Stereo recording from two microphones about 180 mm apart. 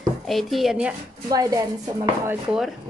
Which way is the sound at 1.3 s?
20° right (ahead or behind).